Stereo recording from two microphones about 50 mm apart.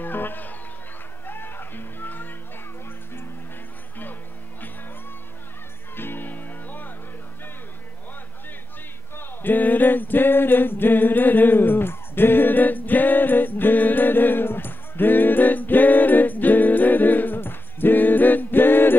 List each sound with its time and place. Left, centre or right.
0.0 s music: left
4.0 s music: left
5.9 s music: left
9.1 s male singing: left